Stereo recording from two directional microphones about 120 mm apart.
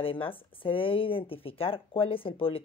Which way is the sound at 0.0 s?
50° left (ahead or behind).